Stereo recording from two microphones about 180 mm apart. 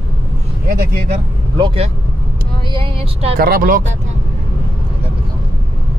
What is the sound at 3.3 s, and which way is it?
Speech, 55° right (ahead or behind).